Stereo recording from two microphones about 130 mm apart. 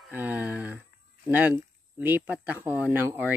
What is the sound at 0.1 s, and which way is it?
Speech, 15° right (ahead or behind).